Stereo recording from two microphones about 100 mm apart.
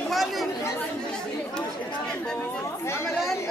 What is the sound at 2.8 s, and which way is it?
Speech, 30° left (ahead or behind).